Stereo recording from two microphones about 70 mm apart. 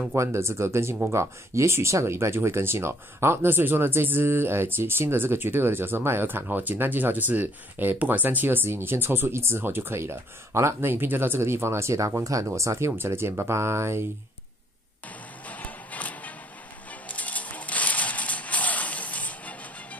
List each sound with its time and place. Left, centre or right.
0.1 s speech: right
15.4 s music: left
17.1 s a sound: left